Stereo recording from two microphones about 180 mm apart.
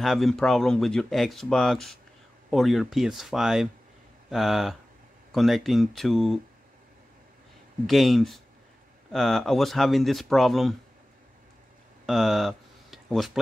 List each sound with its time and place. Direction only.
0.0 s speech: centre (ahead or behind)
7.8 s speech: centre (ahead or behind)
12.1 s a sound: centre (ahead or behind)